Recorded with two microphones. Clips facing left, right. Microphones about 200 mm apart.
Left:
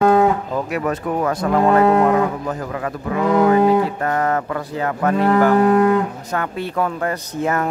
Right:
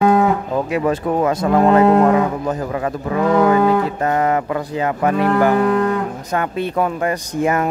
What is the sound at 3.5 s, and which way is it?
Music, 25° left (ahead or behind).